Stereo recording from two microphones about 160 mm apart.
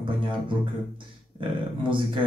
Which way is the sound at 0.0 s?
30° right (ahead or behind).